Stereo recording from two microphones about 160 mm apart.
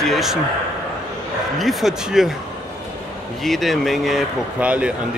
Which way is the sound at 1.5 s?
Centre (ahead or behind).